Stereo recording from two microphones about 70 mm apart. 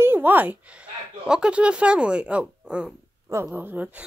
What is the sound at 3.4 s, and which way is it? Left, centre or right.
Speech, right.